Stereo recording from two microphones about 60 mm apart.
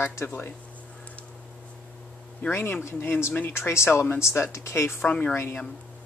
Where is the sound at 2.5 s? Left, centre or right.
Left.